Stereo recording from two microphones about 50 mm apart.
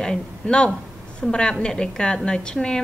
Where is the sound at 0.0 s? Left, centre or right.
Centre.